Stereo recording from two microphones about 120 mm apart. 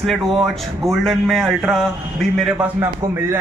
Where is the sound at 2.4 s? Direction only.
15° right (ahead or behind).